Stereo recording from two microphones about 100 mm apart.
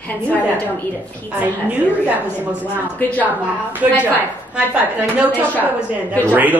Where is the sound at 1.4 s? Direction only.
15° right (ahead or behind).